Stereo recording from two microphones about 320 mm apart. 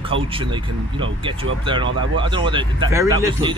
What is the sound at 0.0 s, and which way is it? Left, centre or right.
Speech, centre.